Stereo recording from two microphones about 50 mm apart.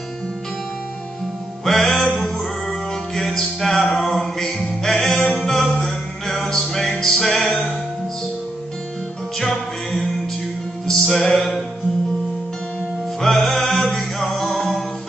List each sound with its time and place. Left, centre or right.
1.6 s music: centre
2.0 s music: centre
2.3 s music: centre
4.0 s mantra: centre
4.8 s music: centre
9.4 s music: centre
13.2 s music: centre